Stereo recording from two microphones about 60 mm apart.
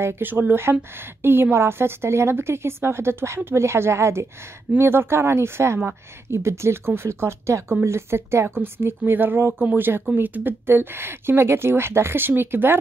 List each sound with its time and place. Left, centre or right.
0.0 s a woman's voice: right